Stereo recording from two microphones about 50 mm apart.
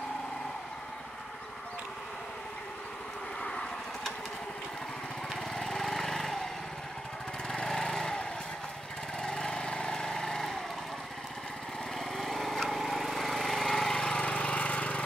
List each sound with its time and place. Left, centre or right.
3.4 s vehicle: centre
5.6 s lawn mower: centre
7.4 s lawn mower: centre
9.2 s vehicle: centre
12.2 s lawn mower: centre
14.2 s lawn mower: left